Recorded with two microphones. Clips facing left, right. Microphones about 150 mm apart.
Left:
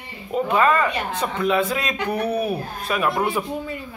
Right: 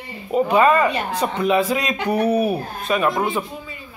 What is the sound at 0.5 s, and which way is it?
Speech, 15° right (ahead or behind).